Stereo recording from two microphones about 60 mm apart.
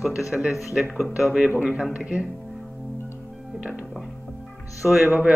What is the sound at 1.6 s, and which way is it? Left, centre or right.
Speech, right.